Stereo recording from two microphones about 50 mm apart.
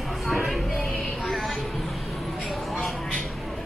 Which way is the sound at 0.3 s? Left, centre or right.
Centre.